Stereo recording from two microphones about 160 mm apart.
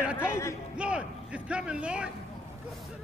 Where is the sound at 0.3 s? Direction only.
15° left (ahead or behind).